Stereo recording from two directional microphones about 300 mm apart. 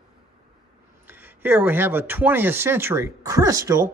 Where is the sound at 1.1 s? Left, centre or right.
Centre.